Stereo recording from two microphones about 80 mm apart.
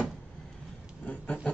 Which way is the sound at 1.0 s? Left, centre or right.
Centre.